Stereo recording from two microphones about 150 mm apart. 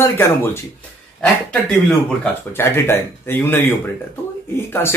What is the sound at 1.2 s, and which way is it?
Speech, 5° left (ahead or behind).